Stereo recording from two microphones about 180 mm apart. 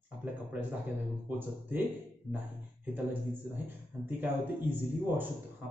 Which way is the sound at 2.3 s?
5° left (ahead or behind).